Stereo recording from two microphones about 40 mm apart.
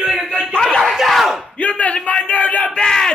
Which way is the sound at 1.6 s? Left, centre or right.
Left.